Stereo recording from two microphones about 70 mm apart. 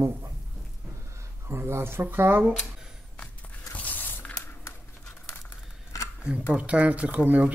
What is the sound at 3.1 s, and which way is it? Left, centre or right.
Biting, centre.